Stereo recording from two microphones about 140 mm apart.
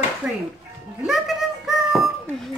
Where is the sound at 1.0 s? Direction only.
Centre (ahead or behind).